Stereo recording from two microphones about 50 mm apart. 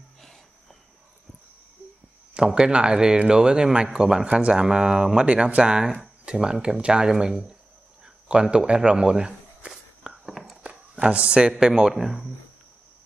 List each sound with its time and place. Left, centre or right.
2.3 s speech: centre
8.0 s a sound: centre
10.3 s walk: centre
10.6 s speech: right; by 12.3 s centre